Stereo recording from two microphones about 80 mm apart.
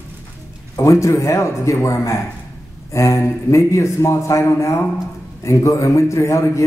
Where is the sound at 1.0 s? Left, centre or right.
Left.